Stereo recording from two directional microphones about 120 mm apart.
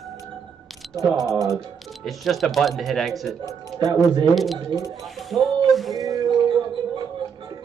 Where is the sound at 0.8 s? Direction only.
Centre (ahead or behind).